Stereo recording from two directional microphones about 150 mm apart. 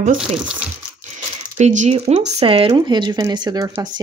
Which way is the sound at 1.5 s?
50° right (ahead or behind).